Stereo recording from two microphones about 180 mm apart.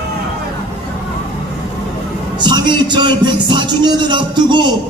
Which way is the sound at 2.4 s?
25° right (ahead or behind).